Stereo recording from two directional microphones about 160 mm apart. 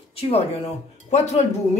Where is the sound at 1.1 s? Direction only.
45° left (ahead or behind).